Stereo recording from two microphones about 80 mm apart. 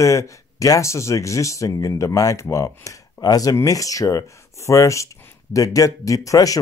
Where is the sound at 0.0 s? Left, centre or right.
Left.